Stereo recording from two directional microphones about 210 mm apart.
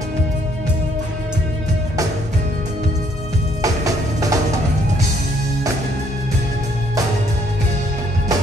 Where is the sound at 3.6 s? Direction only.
15° right (ahead or behind).